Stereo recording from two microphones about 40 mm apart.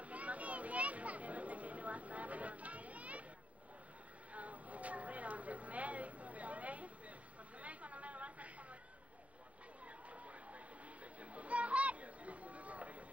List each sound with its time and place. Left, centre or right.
0.0 s chatter: right
4.3 s vehicle: right
7.5 s chatter: right
10.1 s a sound: right